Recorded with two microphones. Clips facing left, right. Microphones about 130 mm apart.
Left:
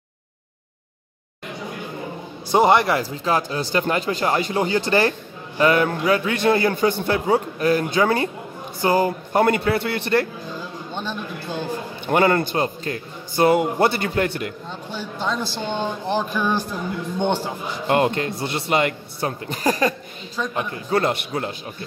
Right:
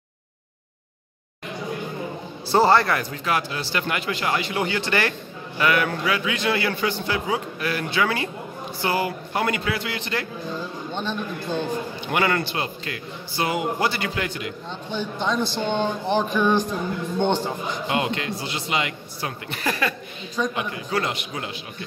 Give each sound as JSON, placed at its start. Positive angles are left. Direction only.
{"t": 2.5, "sound": "a man's voice", "side_deg": 15}
{"t": 9.8, "sound": "a man's voice", "side_deg": 55}
{"t": 11.0, "sound": "speech", "side_deg": 5}
{"t": 12.1, "sound": "a man's voice", "side_deg": 40}
{"t": 14.9, "sound": "a man's voice", "side_deg": 5}
{"t": 17.8, "sound": "a man's voice", "side_deg": 45}